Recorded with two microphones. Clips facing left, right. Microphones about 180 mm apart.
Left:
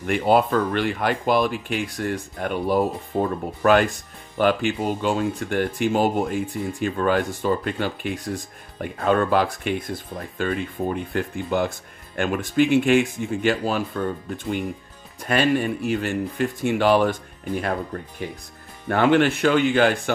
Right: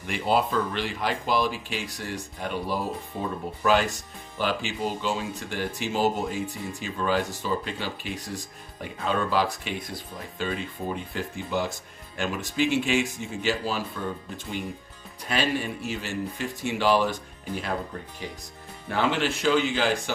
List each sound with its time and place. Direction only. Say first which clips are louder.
0.0 s speech: left 6 dB; 55° left (ahead or behind)